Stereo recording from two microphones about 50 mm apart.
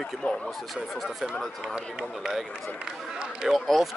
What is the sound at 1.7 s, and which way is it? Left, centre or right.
Speech, centre.